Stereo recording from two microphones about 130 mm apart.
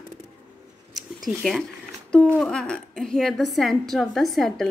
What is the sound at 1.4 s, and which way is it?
Speech, centre (ahead or behind).